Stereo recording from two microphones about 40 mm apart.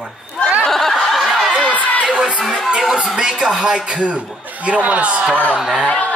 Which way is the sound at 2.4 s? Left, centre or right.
Centre.